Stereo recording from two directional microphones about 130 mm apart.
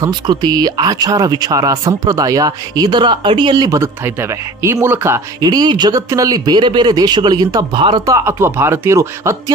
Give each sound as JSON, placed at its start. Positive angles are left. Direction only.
{"t": 0.0, "sound": "speech", "side_deg": -35}
{"t": 5.4, "sound": "speech", "side_deg": -30}
{"t": 8.1, "sound": "speech", "side_deg": -20}